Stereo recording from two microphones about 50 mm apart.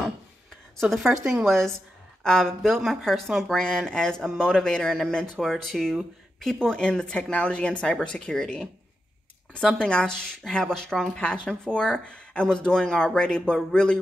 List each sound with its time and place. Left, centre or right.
0.7 s speech: centre
2.2 s speech: centre
2.6 s speech: centre
4.2 s speech: centre
4.5 s speech: centre
6.8 s speech: centre
9.8 s speech: centre
11.1 s speech: left
13.6 s speech: centre